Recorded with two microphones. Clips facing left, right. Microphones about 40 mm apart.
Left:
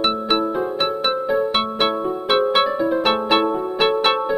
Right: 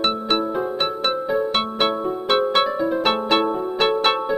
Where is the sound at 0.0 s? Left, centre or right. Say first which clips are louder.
Left 2 dB; centre.